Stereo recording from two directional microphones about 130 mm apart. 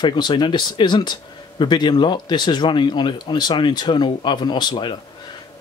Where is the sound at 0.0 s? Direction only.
35° left (ahead or behind).